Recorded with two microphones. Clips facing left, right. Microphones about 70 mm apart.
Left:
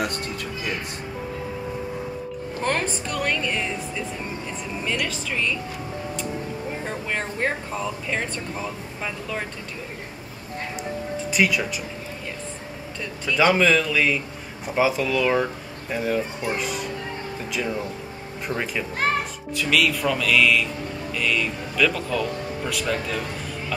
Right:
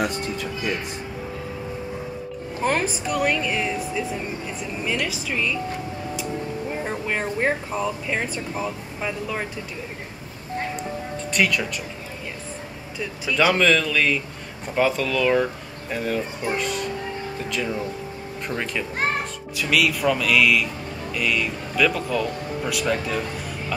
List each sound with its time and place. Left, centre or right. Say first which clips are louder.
0.0 s speech: right 2 dB; centre
2.6 s speech: right 2 dB; centre
6.8 s speech: right 3 dB; centre
11.3 s speech: even; centre
13.0 s speech: even; centre